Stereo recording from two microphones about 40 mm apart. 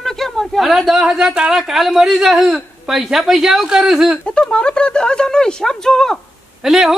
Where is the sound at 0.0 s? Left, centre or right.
Centre.